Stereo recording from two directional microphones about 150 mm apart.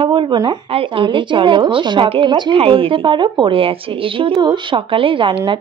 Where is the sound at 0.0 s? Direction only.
35° right (ahead or behind).